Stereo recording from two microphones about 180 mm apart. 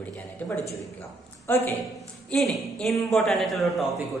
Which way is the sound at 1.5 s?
10° left (ahead or behind).